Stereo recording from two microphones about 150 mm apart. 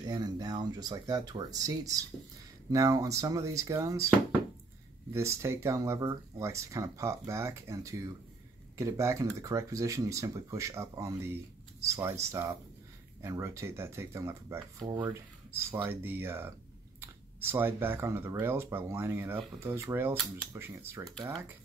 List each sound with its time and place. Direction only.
0.0 s speech: 25° right (ahead or behind)